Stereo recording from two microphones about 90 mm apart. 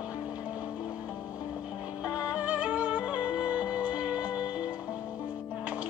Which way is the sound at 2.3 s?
15° right (ahead or behind).